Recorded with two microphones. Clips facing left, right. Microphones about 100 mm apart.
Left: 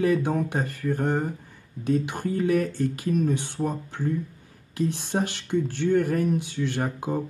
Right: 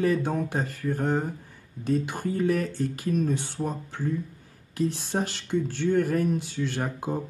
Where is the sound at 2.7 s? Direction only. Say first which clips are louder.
Left 2 dB; 55° left (ahead or behind).